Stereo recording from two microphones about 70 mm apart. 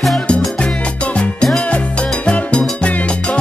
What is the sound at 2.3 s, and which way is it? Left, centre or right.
Music, centre.